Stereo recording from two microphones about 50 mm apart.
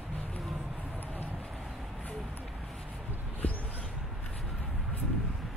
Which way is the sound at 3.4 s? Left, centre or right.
Left.